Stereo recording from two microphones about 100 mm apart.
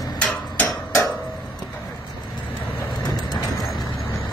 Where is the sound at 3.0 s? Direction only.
45° left (ahead or behind).